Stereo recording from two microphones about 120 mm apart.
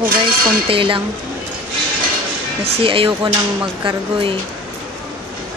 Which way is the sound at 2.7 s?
50° right (ahead or behind).